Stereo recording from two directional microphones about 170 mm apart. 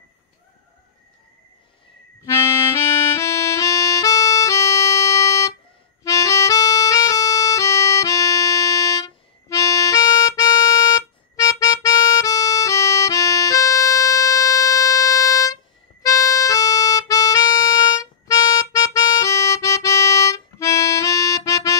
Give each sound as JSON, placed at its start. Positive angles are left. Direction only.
{"t": 2.4, "sound": "music", "side_deg": 15}
{"t": 6.0, "sound": "harmonica", "side_deg": 20}
{"t": 16.0, "sound": "music", "side_deg": 20}